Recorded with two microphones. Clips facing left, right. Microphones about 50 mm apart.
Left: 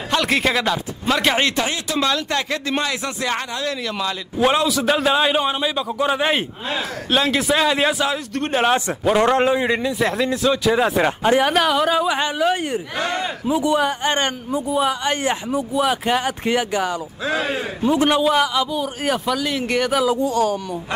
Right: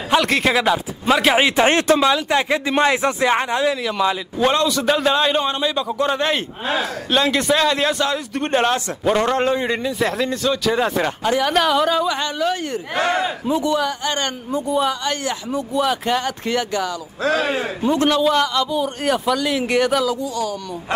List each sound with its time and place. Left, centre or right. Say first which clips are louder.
0.2 s a man's voice: right 2 dB; centre
1.7 s speech: right 10 dB; right
2.0 s speech: right 4 dB; centre
2.8 s speech: right 7 dB; right
4.4 s a man's voice: left 1 dB; centre
11.1 s a man's voice: left 3 dB; left
11.5 s a man's voice: even; centre
13.7 s a man's voice: left 2 dB; left
14.5 s a man's voice: right 2 dB; centre
17.4 s speech: right 2 dB; right
17.9 s a man's voice: even; centre
20.2 s speech: left 5 dB; left